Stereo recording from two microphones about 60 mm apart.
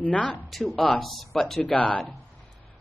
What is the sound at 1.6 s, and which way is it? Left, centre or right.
Speech, left.